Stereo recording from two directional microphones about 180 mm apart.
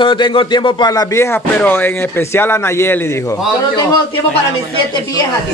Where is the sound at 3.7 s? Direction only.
30° left (ahead or behind).